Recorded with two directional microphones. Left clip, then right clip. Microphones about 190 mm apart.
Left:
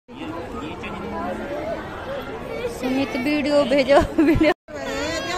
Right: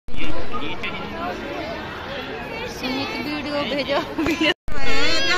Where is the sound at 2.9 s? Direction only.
60° left (ahead or behind).